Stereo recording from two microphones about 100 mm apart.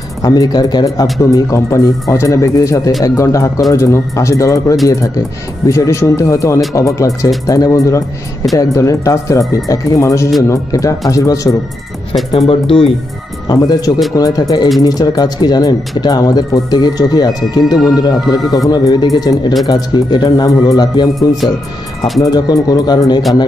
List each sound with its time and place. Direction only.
0.2 s speech: 40° left (ahead or behind)
12.3 s speech: 65° left (ahead or behind)
13.5 s speech: 40° left (ahead or behind)